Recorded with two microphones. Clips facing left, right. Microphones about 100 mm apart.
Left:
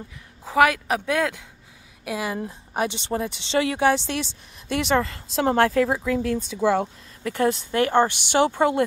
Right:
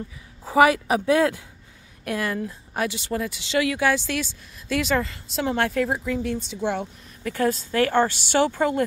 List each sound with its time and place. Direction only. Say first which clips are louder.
0.5 s speech: right 2 dB; 5° right (ahead or behind)
2.0 s a woman's voice: right 1 dB; 15° left (ahead or behind); by 7.3 s 40° left (ahead or behind)
7.3 s speech: even; 25° left (ahead or behind)